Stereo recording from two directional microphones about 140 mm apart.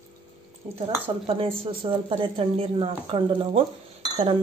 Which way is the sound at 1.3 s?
40° right (ahead or behind).